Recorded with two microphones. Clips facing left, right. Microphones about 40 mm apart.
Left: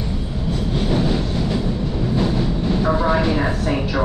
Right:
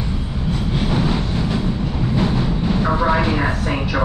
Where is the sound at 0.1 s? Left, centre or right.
Centre.